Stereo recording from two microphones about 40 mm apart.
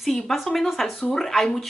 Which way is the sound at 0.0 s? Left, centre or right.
Centre.